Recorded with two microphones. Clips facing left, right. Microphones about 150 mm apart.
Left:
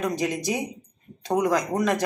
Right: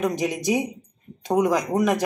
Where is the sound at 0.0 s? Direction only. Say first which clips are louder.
Right 2 dB; 15° right (ahead or behind).